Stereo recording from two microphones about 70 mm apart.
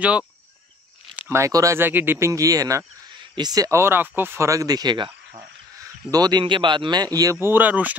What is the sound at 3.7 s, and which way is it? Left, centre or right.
Speech, right.